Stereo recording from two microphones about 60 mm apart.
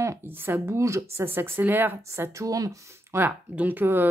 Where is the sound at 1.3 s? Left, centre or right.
Right.